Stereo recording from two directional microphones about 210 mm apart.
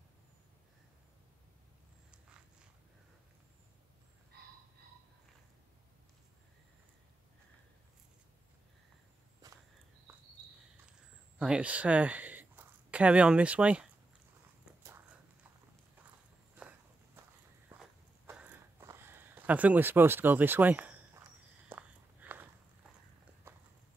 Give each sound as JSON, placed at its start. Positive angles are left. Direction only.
{"t": 9.4, "sound": "walk", "side_deg": -20}
{"t": 11.3, "sound": "speech", "side_deg": -5}
{"t": 16.5, "sound": "walk", "side_deg": -5}
{"t": 18.2, "sound": "a sound", "side_deg": -10}
{"t": 21.6, "sound": "walk", "side_deg": -10}
{"t": 23.5, "sound": "clip-clop", "side_deg": -10}